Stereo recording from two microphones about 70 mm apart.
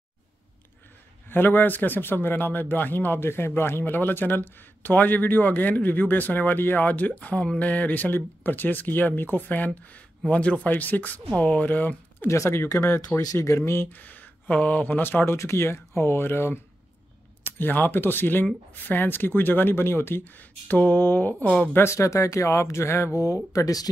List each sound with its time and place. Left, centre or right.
1.3 s speech: left
12.3 s speech: left
14.0 s speech: left
15.3 s speech: left
21.7 s speech: left